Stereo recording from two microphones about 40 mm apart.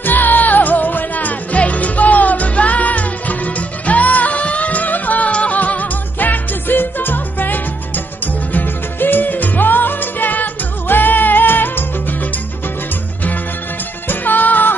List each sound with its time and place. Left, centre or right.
0.0 s music: left
14.0 s music: left